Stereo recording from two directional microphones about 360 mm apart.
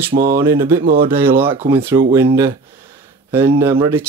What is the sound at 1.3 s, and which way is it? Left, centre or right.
Speech, centre.